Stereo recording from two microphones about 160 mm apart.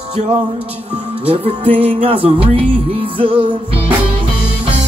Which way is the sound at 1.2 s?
35° right (ahead or behind).